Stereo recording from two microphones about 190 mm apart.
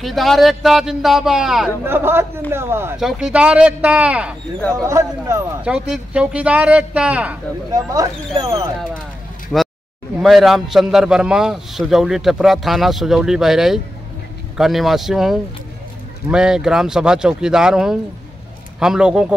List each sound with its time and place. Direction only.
0.0 s a man's voice: centre (ahead or behind); by 5.7 s 15° right (ahead or behind)
5.7 s speech: 5° right (ahead or behind)
7.7 s speech: 20° right (ahead or behind)
9.5 s a man's voice: centre (ahead or behind)